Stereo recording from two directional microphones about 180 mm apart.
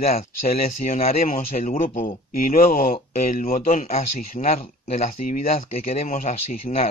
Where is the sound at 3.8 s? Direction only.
40° left (ahead or behind).